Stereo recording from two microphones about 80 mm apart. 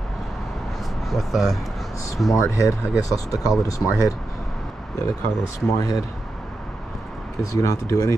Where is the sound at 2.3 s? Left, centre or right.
Left.